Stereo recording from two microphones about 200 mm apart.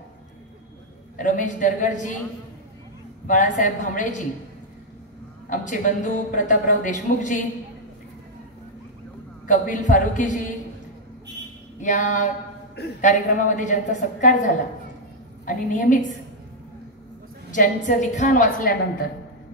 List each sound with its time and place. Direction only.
1.1 s a man's voice: 40° left (ahead or behind)
3.3 s a man's voice: 40° left (ahead or behind)
5.5 s a man's voice: 40° left (ahead or behind)
9.5 s a man's voice: 40° left (ahead or behind)
11.8 s a man's voice: 40° left (ahead or behind)
17.5 s a man's voice: 40° left (ahead or behind)